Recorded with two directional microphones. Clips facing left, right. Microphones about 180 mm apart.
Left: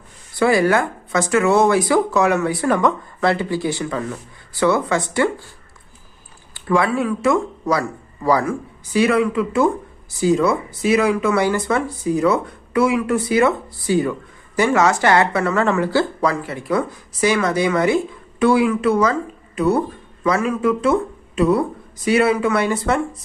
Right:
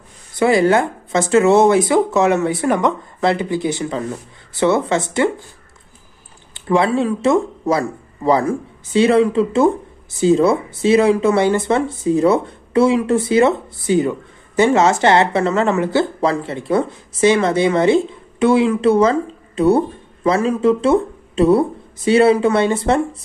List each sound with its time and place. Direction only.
0.3 s speech: 20° right (ahead or behind)
6.5 s speech: 25° right (ahead or behind)